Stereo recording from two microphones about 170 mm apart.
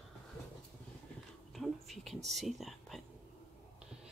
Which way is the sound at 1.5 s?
Centre (ahead or behind).